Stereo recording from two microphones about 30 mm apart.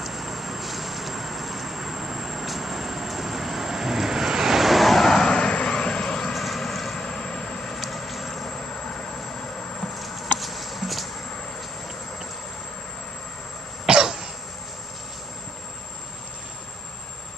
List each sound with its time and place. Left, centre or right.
0.0 s vehicle: centre
5.2 s vehicle: left
6.3 s vehicle: centre
7.0 s vehicle: left
7.9 s vehicle: centre
8.5 s vehicle: left
10.4 s a sound: centre
13.8 s cough: right